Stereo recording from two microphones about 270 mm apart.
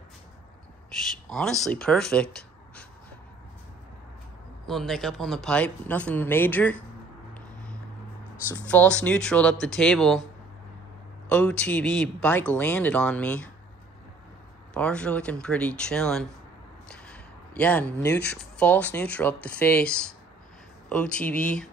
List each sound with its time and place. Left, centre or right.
0.9 s speech: centre
4.6 s speech: centre
8.6 s speech: centre
11.2 s speech: centre
14.7 s speech: centre
16.9 s a sound: centre
18.1 s speech: left
18.4 s speech: centre